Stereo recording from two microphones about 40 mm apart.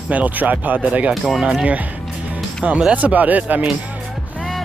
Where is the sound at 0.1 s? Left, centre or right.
Right.